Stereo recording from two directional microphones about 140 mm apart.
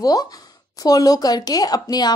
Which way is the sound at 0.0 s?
25° left (ahead or behind).